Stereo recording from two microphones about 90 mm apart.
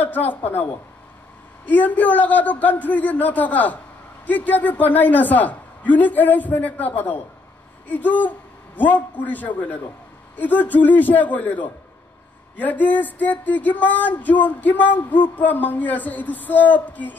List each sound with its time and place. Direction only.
0.0 s music: 20° left (ahead or behind)
1.7 s music: 20° left (ahead or behind)
7.9 s a man's voice: 20° left (ahead or behind)
10.3 s music: 20° left (ahead or behind)